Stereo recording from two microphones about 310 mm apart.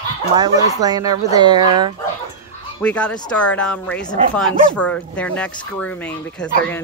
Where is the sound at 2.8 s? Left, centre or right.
Centre.